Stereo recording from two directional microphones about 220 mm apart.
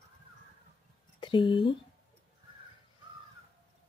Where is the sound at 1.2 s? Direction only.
20° left (ahead or behind).